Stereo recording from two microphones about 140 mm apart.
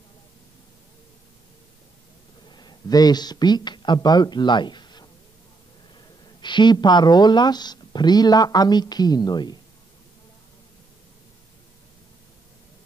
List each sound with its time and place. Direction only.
2.5 s speech: 30° left (ahead or behind)
6.4 s speech: 35° left (ahead or behind)